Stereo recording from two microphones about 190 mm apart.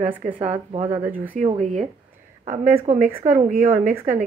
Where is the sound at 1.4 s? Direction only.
40° right (ahead or behind).